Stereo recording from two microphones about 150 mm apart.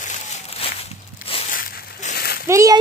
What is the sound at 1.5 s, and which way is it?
Crushing, 75° left (ahead or behind).